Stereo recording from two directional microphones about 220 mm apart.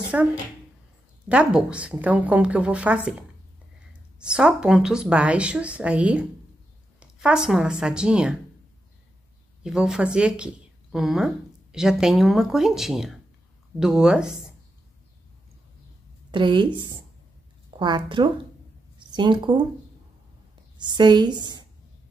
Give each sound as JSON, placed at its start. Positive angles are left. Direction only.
{"t": 0.1, "sound": "speech", "side_deg": -5}
{"t": 1.3, "sound": "speech", "side_deg": -5}
{"t": 9.6, "sound": "speech", "side_deg": -5}
{"t": 16.3, "sound": "a woman's voice", "side_deg": -20}
{"t": 20.7, "sound": "a woman's voice", "side_deg": -20}